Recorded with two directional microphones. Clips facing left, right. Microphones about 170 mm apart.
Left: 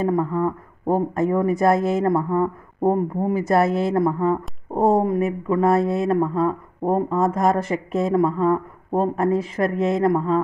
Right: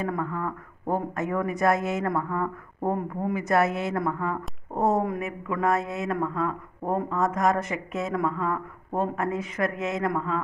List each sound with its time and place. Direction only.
0.0 s speech: 30° left (ahead or behind)